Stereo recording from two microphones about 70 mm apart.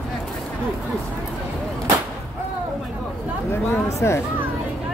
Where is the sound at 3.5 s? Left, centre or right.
Left.